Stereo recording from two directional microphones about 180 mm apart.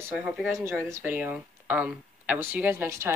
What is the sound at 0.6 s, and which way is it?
Speech, 15° right (ahead or behind).